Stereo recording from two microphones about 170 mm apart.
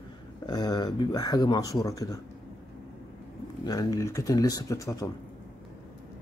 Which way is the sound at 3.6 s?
20° left (ahead or behind).